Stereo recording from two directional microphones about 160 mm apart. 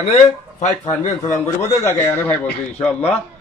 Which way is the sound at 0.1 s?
50° left (ahead or behind).